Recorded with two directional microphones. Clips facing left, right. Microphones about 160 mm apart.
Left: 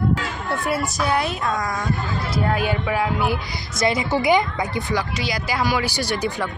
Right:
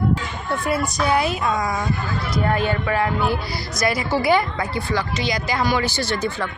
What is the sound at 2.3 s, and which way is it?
A woman's voice, 5° left (ahead or behind).